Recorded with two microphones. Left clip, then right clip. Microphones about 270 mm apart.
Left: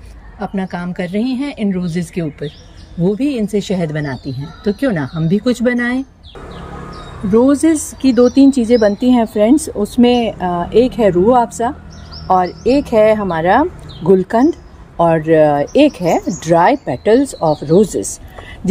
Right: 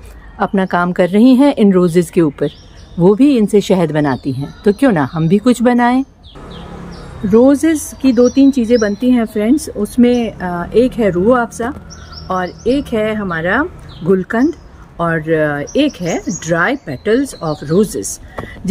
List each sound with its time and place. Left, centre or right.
0.4 s speech: centre
7.2 s speech: centre